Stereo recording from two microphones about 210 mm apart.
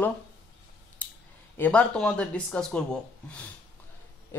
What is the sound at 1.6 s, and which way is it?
Speech, 5° left (ahead or behind).